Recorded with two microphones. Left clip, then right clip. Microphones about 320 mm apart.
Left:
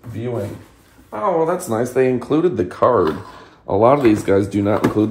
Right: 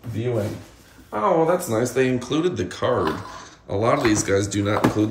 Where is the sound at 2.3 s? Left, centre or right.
Centre.